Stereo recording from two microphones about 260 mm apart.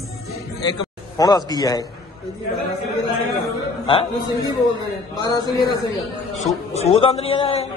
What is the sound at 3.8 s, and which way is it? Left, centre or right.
Speech, centre.